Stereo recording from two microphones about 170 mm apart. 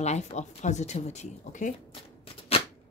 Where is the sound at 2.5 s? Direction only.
35° left (ahead or behind).